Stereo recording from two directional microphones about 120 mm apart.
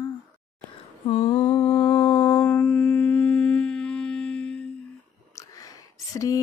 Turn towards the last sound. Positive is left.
turn(degrees=25)  # may be behind; listen again after turning